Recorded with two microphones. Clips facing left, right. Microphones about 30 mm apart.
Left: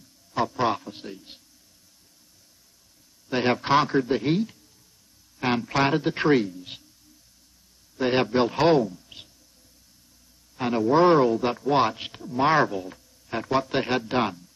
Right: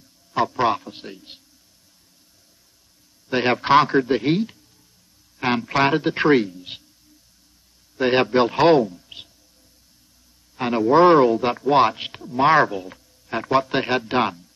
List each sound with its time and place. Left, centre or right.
0.3 s a man's voice: right
3.3 s a man's voice: right
8.0 s a man's voice: right
10.5 s a man's voice: right